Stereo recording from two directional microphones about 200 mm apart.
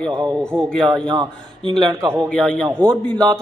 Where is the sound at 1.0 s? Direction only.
25° right (ahead or behind).